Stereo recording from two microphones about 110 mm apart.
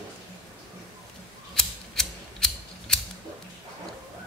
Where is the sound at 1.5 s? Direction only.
5° left (ahead or behind).